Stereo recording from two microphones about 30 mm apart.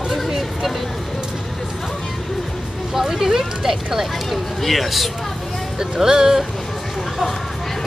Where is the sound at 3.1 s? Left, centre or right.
Centre.